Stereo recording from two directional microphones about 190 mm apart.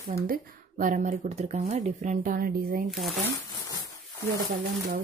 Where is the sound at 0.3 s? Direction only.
45° right (ahead or behind).